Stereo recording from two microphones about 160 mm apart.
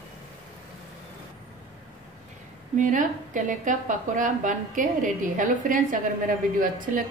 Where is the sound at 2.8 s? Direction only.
55° right (ahead or behind).